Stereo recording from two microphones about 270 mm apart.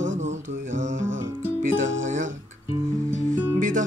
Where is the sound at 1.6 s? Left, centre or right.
Right.